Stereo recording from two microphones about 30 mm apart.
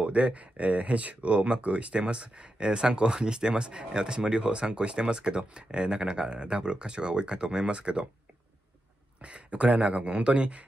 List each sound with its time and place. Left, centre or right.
0.0 s speech: right
9.2 s speech: right